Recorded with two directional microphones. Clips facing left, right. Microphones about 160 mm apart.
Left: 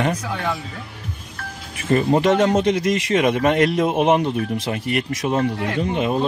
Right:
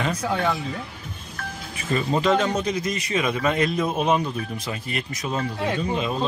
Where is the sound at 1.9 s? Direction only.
55° left (ahead or behind).